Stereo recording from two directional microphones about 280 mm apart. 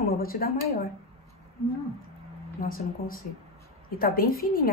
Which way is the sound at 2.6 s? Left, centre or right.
Left.